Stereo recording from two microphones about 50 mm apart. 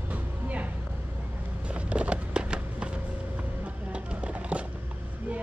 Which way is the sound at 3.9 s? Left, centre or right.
Right.